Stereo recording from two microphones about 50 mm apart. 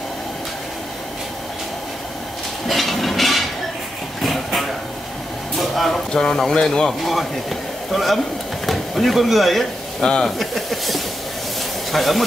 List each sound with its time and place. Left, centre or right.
2.7 s train: centre
4.2 s a sound: centre
5.6 s speech: centre
7.9 s speech: centre
8.6 s stir: centre
10.0 s speech: centre
10.4 s speech: centre